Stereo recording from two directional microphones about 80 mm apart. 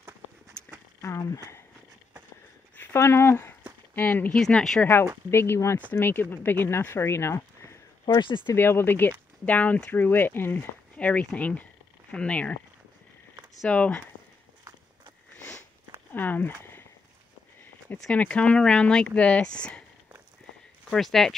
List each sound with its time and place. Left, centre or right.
2.9 s speech: left
4.3 s speech: centre
5.3 s speech: left
8.0 s speech: left
8.5 s speech: left
11.0 s speech: centre
13.7 s speech: centre
16.1 s speech: left
18.1 s speech: centre
20.9 s speech: centre